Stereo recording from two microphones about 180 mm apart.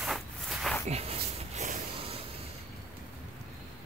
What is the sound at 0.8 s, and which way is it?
Speech, 35° right (ahead or behind).